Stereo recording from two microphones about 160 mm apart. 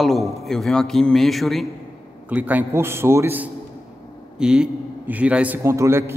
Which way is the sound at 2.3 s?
10° right (ahead or behind).